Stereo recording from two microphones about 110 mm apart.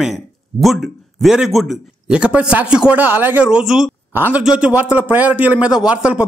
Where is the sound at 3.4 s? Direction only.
5° right (ahead or behind).